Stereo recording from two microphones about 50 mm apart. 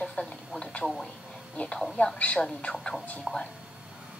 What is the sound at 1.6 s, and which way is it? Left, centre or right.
Speech, left.